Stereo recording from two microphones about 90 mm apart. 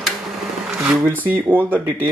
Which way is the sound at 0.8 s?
20° right (ahead or behind).